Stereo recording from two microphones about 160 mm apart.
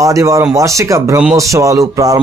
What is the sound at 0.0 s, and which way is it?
A man's voice, 20° right (ahead or behind).